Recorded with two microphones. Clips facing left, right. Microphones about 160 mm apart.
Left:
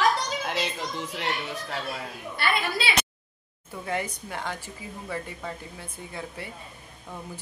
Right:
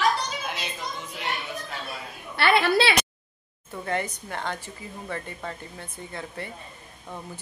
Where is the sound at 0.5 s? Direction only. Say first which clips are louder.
Left 4 dB; 90° left.